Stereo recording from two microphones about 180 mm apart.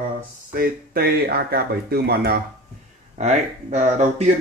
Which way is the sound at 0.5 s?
55° right (ahead or behind).